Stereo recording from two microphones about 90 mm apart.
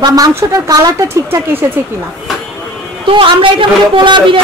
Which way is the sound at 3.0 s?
80° right.